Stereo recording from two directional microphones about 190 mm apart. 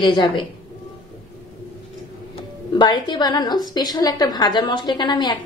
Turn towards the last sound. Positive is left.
turn(degrees=25)  # may be behind; listen again after turning